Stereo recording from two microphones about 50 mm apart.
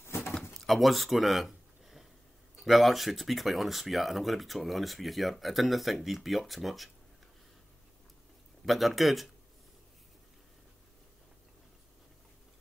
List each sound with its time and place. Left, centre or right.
0.0 s door: left
0.5 s a sound: centre
2.6 s speech: centre
8.6 s speech: centre